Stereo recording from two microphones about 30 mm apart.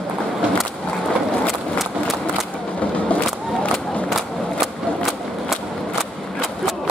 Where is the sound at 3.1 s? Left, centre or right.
Left.